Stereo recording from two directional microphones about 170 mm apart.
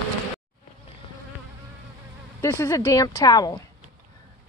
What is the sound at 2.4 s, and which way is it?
Speech, 15° left (ahead or behind).